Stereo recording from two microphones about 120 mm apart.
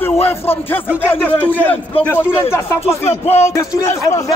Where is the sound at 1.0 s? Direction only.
15° left (ahead or behind).